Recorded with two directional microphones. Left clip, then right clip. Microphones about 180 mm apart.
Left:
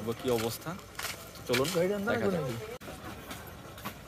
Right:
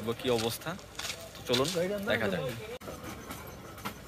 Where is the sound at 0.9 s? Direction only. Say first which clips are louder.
Even; 40° left (ahead or behind).